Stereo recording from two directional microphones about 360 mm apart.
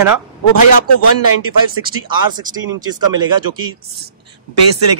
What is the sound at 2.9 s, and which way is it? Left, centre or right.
Speech, centre.